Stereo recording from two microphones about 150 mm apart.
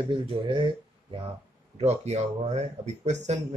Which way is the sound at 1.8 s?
45° right (ahead or behind).